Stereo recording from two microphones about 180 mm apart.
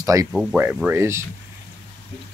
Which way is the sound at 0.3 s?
5° right (ahead or behind).